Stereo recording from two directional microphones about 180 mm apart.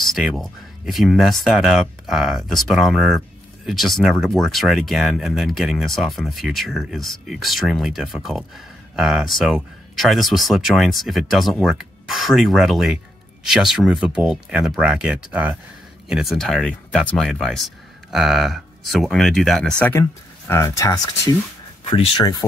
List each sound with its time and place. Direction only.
0.0 s speech: centre (ahead or behind)
19.8 s speech: 15° left (ahead or behind)
21.8 s speech: 30° left (ahead or behind)